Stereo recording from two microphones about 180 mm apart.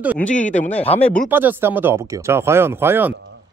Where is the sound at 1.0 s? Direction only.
5° left (ahead or behind).